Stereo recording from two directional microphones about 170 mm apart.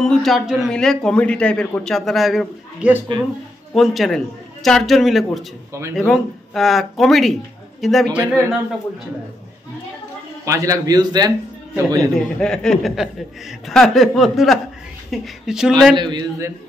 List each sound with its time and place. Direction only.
0.0 s a man's voice: centre (ahead or behind)
3.1 s a man's voice: 30° right (ahead or behind)
3.7 s a man's voice: centre (ahead or behind)
5.7 s a man's voice: 15° right (ahead or behind)
5.9 s a man's voice: centre (ahead or behind)
10.4 s a man's voice: 20° right (ahead or behind)
12.2 s a man's voice: 5° left (ahead or behind)
16.0 s a man's voice: 25° right (ahead or behind)